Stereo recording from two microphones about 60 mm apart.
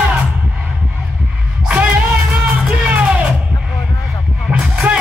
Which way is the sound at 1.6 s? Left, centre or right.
Centre.